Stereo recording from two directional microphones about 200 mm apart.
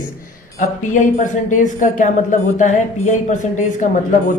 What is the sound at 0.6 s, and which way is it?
A woman's voice, 40° left (ahead or behind).